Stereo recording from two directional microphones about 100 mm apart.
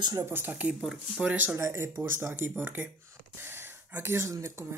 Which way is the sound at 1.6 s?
25° right (ahead or behind).